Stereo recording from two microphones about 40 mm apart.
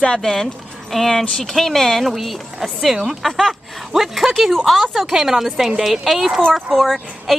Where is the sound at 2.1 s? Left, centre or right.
Centre.